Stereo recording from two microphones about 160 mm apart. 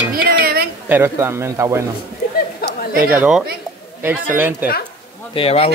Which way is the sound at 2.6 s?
80° left.